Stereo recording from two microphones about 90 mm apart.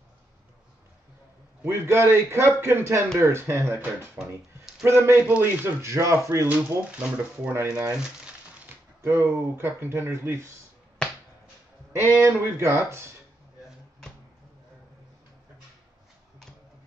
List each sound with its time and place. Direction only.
1.7 s speech: 30° right (ahead or behind)
4.2 s a sound: 5° right (ahead or behind)
4.8 s speech: 25° right (ahead or behind)
9.0 s speech: 30° right (ahead or behind)
12.0 s speech: 25° right (ahead or behind)